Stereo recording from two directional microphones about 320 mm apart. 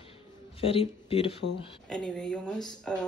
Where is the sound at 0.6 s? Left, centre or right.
Centre.